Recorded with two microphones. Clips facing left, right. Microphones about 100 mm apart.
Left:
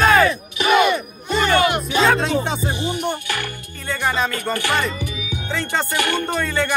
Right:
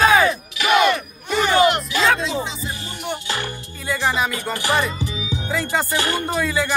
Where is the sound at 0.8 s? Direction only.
70° right (ahead or behind).